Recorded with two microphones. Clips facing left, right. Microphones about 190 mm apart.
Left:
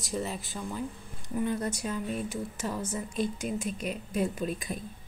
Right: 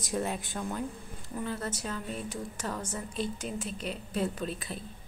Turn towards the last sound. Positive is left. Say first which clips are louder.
# left 3 dB
turn(degrees=10)  # may be behind; listen again after turning